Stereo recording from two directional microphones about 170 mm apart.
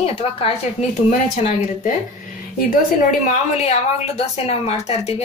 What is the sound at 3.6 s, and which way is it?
A woman's voice, 40° left (ahead or behind).